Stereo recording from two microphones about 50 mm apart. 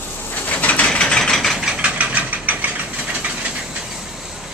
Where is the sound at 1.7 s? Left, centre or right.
Right.